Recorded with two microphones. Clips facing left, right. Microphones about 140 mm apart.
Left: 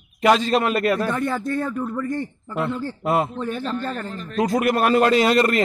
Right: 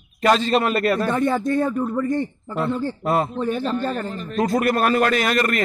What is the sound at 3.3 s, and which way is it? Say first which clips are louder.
Speech: right 3 dB; 10° right (ahead or behind).